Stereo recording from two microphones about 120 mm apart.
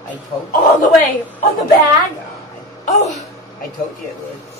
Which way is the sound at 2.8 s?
80° left.